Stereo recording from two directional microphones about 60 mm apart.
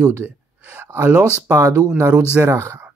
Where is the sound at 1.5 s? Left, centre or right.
Right.